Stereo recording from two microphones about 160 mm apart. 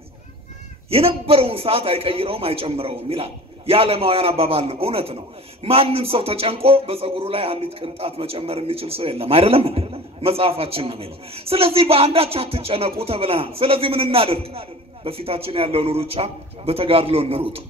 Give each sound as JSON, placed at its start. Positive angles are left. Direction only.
{"t": 0.8, "sound": "a man's voice", "side_deg": -35}